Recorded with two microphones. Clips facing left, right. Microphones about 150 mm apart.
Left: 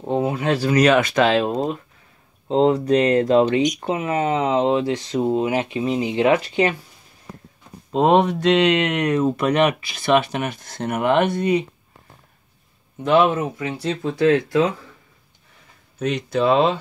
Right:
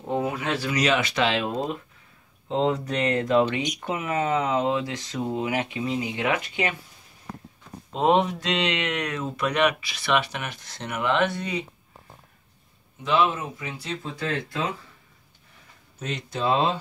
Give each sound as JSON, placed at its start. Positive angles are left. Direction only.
{"t": 0.1, "sound": "speech", "side_deg": 30}
{"t": 0.7, "sound": "speech", "side_deg": 50}
{"t": 2.5, "sound": "speech", "side_deg": 35}
{"t": 7.9, "sound": "speech", "side_deg": 60}
{"t": 13.0, "sound": "speech", "side_deg": 60}
{"t": 16.0, "sound": "speech", "side_deg": 70}